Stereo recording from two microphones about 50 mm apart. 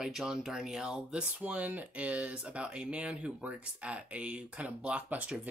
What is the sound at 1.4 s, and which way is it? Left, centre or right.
Speech, right.